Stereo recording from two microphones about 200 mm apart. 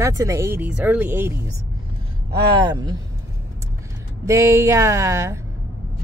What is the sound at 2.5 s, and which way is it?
Speech, 20° right (ahead or behind).